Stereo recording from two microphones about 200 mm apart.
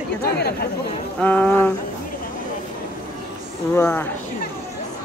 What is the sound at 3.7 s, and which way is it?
Speech, 10° left (ahead or behind).